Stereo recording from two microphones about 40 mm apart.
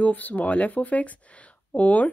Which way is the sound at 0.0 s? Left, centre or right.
Left.